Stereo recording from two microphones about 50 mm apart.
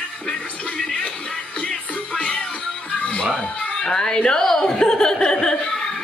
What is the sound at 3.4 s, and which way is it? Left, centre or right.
A child's voice, centre.